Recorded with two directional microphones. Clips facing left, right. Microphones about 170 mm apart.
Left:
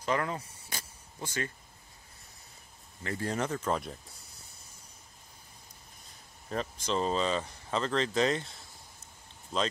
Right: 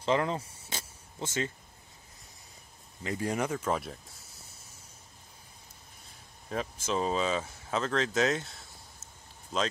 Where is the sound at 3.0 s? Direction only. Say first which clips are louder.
Right 1 dB; 15° right (ahead or behind).